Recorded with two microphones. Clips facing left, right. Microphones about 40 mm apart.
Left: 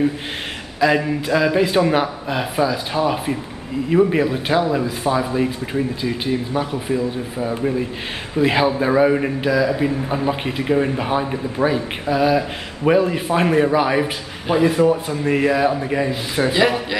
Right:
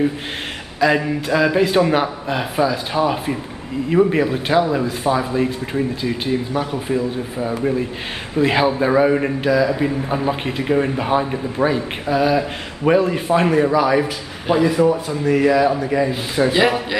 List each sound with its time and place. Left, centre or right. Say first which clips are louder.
0.7 s a man's voice: even; centre
13.5 s a man's voice: left 2 dB; left
14.5 s a man's voice: even; centre
15.4 s speech: right 2 dB; centre
15.9 s a man's voice: right 2 dB; left
16.5 s a man's voice: even; centre